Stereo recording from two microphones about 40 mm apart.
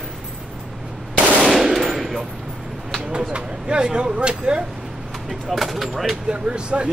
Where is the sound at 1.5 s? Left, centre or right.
Centre.